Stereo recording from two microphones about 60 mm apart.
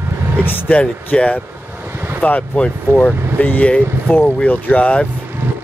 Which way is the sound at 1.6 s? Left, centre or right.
Right.